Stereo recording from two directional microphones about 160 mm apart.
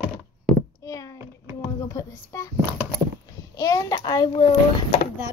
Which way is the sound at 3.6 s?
20° left (ahead or behind).